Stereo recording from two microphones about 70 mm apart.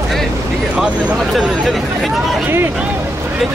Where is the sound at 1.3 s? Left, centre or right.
Centre.